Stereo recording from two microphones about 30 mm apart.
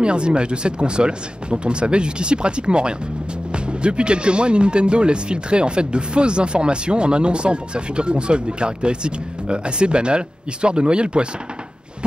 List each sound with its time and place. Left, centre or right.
0.0 s speech: right